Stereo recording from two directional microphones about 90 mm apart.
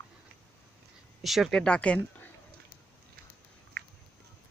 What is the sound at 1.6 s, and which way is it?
Speech, 10° left (ahead or behind).